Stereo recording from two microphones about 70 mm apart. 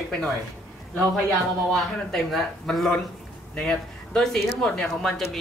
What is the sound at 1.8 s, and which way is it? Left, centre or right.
A man's voice, centre.